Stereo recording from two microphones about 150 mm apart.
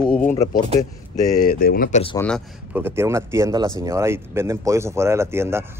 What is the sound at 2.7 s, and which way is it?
Speech, 15° right (ahead or behind).